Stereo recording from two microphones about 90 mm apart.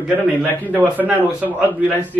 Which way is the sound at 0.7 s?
20° right (ahead or behind).